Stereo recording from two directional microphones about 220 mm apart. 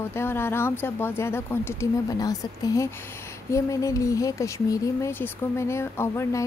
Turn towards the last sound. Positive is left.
turn(degrees=10)  # may be behind; listen again after turning